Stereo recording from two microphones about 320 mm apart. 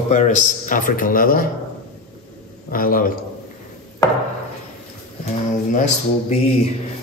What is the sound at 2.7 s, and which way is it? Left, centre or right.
Speech, left.